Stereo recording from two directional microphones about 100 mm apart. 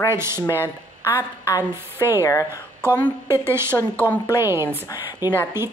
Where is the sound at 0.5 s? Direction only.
25° left (ahead or behind).